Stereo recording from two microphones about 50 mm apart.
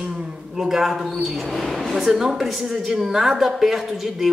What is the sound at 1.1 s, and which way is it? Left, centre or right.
A woman's voice, centre.